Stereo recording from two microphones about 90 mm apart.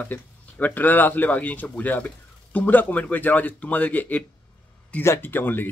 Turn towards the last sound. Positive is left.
turn(degrees=25)  # may be behind; listen again after turning